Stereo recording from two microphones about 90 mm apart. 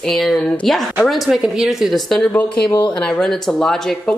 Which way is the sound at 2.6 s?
55° left (ahead or behind).